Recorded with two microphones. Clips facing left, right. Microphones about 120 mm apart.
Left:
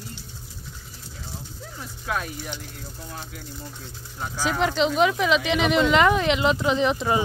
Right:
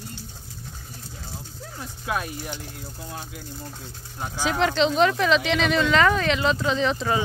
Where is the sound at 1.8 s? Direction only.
25° right (ahead or behind).